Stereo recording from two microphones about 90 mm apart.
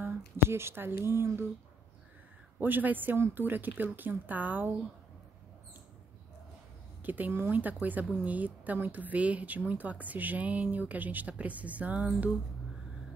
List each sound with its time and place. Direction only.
0.0 s speech: 30° right (ahead or behind)
2.6 s speech: 20° right (ahead or behind)
7.0 s speech: 20° right (ahead or behind)